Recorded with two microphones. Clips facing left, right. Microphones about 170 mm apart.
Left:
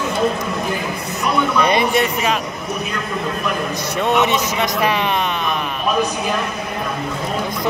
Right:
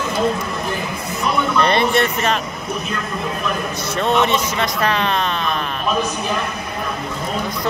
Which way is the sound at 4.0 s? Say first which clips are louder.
Even; 15° left (ahead or behind).